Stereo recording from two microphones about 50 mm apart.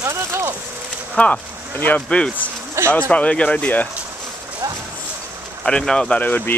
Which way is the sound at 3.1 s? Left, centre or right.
Left.